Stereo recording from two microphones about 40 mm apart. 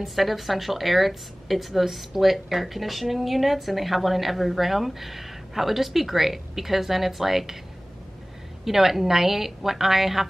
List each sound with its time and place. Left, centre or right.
0.0 s speech: centre
8.6 s a woman's voice: centre